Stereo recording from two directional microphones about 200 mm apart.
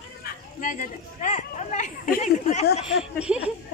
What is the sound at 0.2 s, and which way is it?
Speech, 40° left (ahead or behind).